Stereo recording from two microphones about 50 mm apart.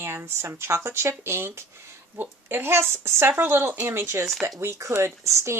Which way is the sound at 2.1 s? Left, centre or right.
Right.